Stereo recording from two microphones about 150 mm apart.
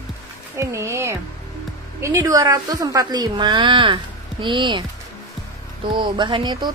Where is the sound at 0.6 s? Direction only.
20° right (ahead or behind).